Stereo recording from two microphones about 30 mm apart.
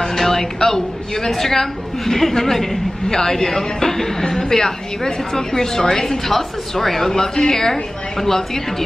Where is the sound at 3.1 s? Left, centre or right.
Left.